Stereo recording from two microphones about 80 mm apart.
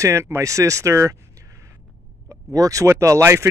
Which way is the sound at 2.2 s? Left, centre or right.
Right.